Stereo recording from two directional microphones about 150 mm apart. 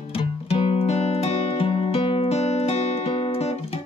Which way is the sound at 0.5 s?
40° left (ahead or behind).